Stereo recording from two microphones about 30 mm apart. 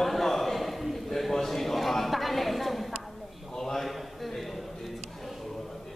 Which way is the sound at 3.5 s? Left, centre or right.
Centre.